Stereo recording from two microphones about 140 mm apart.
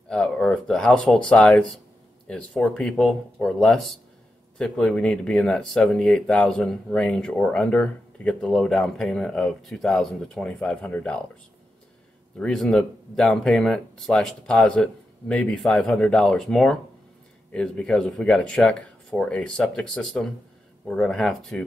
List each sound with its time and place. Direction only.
0.1 s speech: 5° left (ahead or behind)
12.4 s speech: 5° left (ahead or behind)